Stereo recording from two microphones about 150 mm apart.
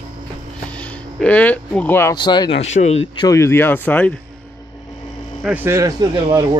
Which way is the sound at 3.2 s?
20° left (ahead or behind).